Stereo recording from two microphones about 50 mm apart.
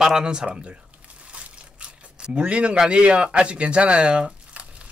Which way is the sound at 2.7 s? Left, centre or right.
Centre.